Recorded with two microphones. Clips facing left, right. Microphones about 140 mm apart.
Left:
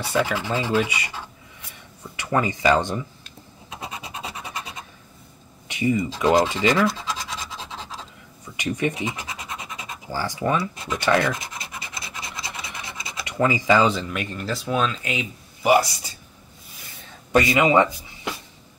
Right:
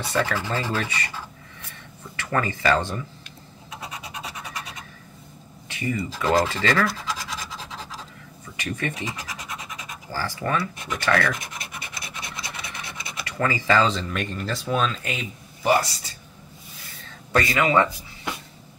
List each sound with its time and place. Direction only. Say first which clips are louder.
0.1 s speech: left 2 dB; 10° left (ahead or behind)
2.1 s speech: left 3 dB; 15° left (ahead or behind)
3.8 s scratch: left 2 dB; 25° left (ahead or behind)
5.7 s speech: left 6 dB; 20° left (ahead or behind)
8.5 s scratch: left 5 dB; 15° left (ahead or behind)
10.1 s speech: left 3 dB; 15° left (ahead or behind)
13.2 s speech: left 4 dB; 20° left (ahead or behind); by 15.2 s centre (ahead or behind)
15.6 s speech: left 3 dB; 15° left (ahead or behind)
17.3 s speech: left 3 dB; 20° left (ahead or behind)